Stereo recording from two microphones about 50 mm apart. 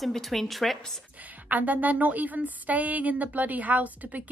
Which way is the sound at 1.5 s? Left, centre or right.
Right.